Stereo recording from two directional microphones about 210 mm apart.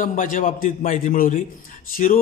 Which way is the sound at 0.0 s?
40° left (ahead or behind).